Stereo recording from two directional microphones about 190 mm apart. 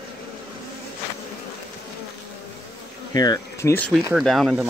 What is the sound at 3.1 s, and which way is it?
Speech, 20° left (ahead or behind).